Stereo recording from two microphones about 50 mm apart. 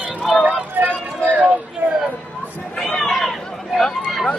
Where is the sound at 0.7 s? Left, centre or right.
Right.